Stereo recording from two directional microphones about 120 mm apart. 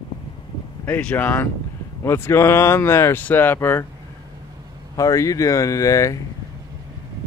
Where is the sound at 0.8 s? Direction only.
15° left (ahead or behind).